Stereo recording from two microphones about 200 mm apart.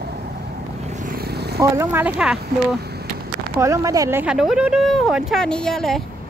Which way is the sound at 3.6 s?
15° right (ahead or behind).